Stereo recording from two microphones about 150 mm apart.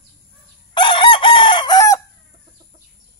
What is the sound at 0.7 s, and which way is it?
Chicken, 35° left (ahead or behind).